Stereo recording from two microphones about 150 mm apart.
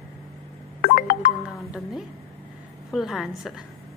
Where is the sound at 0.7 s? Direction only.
70° left (ahead or behind).